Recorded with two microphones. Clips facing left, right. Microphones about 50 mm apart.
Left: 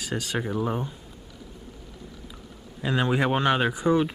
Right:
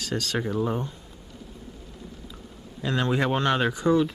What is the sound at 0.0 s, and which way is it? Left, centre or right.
Speech, centre.